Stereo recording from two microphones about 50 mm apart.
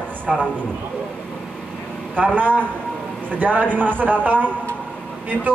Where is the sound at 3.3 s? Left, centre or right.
Right.